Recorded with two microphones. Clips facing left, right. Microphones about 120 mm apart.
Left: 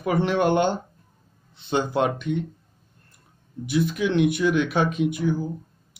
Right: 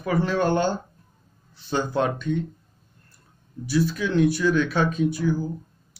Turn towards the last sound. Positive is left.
turn(degrees=20)  # may be behind; listen again after turning